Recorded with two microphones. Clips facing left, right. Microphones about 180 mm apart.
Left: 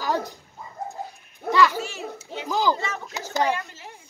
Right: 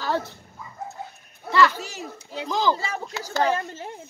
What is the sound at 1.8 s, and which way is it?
Children playing, 40° right (ahead or behind).